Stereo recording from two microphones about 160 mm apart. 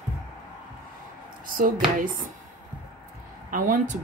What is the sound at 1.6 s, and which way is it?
Speech, 55° right (ahead or behind).